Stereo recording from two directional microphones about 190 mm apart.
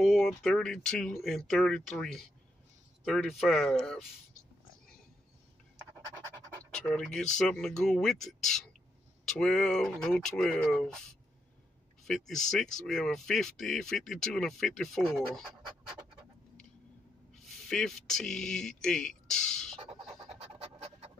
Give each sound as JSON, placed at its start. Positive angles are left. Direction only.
{"t": 0.0, "sound": "speech", "side_deg": 0}
{"t": 6.7, "sound": "speech", "side_deg": 5}
{"t": 12.0, "sound": "speech", "side_deg": 0}
{"t": 17.6, "sound": "speech", "side_deg": 0}
{"t": 19.8, "sound": "pant", "side_deg": -30}